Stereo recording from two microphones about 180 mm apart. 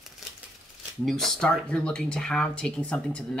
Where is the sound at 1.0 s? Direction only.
Centre (ahead or behind).